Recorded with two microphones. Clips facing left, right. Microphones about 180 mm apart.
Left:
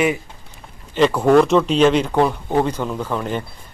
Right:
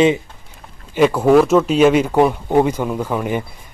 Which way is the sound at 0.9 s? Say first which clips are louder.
Right 2 dB; 5° right (ahead or behind).